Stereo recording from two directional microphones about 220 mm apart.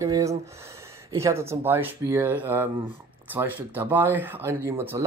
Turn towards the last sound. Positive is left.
turn(degrees=-10)  # may be behind; listen again after turning